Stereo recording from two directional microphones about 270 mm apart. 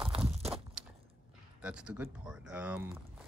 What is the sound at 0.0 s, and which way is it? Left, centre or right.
Walk, right.